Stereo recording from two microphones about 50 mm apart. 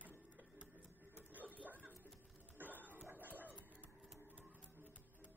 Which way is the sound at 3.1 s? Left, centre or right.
Right.